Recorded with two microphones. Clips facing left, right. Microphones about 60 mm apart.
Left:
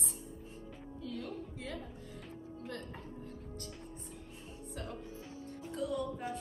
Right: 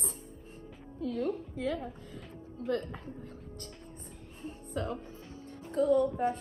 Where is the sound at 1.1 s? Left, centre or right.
Right.